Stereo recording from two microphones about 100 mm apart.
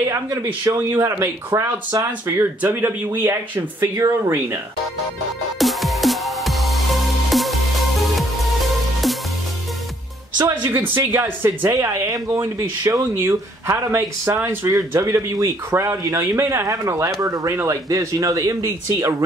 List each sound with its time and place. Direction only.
0.1 s speech: 30° right (ahead or behind)
1.9 s speech: 40° right (ahead or behind)
2.2 s speech: 20° right (ahead or behind)
3.9 s speech: 35° right (ahead or behind)
5.6 s music: centre (ahead or behind)
9.0 s music: centre (ahead or behind)
10.3 s speech: 45° right (ahead or behind)
10.7 s speech: 20° right (ahead or behind)
11.7 s speech: 30° right (ahead or behind)